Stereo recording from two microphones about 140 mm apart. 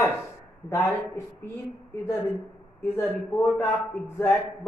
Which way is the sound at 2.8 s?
15° left (ahead or behind).